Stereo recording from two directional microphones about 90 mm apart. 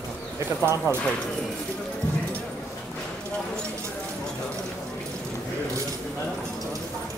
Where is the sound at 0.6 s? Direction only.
30° right (ahead or behind).